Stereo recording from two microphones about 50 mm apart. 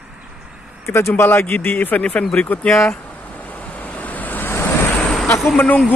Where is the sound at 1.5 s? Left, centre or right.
Left.